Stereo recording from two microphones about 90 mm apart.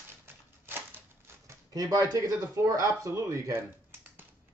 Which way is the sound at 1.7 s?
40° right (ahead or behind).